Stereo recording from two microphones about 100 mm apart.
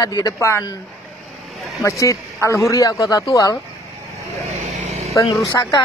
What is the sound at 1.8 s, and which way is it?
Speech, 30° left (ahead or behind).